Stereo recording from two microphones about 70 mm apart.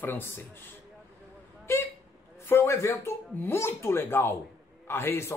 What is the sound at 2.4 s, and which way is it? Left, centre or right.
Speech, left.